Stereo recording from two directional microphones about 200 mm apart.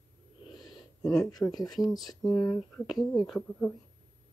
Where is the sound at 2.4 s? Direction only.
5° left (ahead or behind).